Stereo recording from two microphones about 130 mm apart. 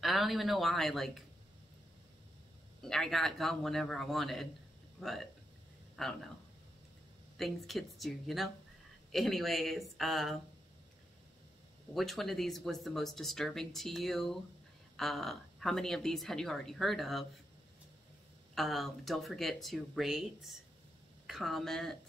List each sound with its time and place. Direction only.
0.0 s speech: centre (ahead or behind)
2.8 s speech: 5° left (ahead or behind)
7.3 s speech: centre (ahead or behind)
11.9 s speech: centre (ahead or behind)
18.5 s speech: centre (ahead or behind)